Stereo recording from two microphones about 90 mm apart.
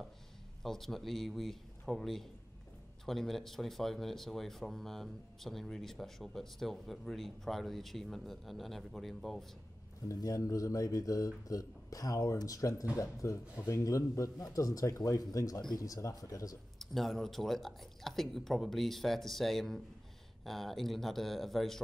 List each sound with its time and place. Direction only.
0.6 s speech: 5° left (ahead or behind)
10.0 s speech: 40° left (ahead or behind)
16.7 s speech: centre (ahead or behind)